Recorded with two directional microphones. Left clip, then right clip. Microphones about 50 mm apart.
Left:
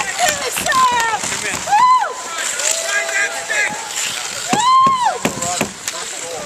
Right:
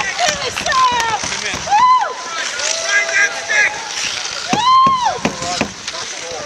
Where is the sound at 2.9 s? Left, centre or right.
Right.